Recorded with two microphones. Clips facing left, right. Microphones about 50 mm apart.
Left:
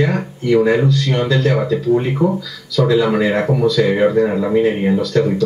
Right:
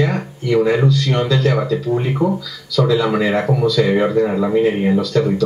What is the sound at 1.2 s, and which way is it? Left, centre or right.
Speech, centre.